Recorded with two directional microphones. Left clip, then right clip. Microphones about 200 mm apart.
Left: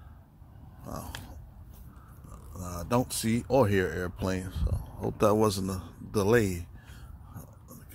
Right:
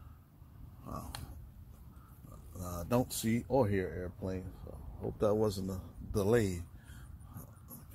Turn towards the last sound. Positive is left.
turn(degrees=5)  # may be behind; listen again after turning